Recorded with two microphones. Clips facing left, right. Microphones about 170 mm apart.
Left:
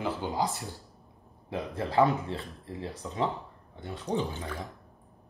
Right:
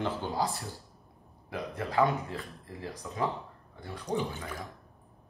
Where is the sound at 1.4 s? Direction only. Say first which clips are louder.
Left 3 dB; 30° left (ahead or behind).